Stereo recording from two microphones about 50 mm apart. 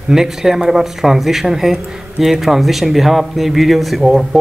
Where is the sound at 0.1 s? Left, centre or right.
Centre.